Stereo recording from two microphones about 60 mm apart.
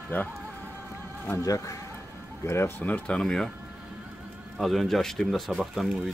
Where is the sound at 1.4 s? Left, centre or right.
Left.